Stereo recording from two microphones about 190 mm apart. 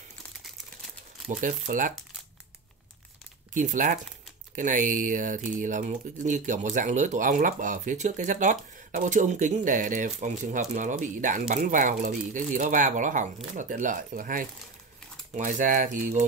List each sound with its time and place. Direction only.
1.2 s speech: 45° right (ahead or behind)
3.5 s speech: 40° right (ahead or behind)